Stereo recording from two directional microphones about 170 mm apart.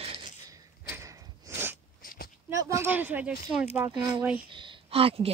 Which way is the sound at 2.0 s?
55° left (ahead or behind).